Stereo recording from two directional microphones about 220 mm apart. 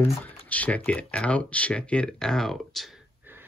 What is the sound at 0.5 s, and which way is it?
Speech, 5° left (ahead or behind).